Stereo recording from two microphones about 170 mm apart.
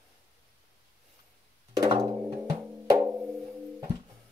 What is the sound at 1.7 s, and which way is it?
Music, 25° right (ahead or behind).